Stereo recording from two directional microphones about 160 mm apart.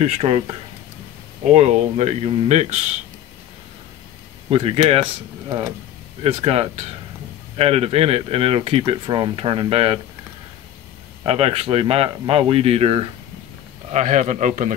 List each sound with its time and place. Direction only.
0.0 s speech: 40° right (ahead or behind)
4.5 s speech: 35° right (ahead or behind)
6.2 s speech: 35° right (ahead or behind)
11.2 s speech: 35° right (ahead or behind)
13.9 s speech: 45° right (ahead or behind)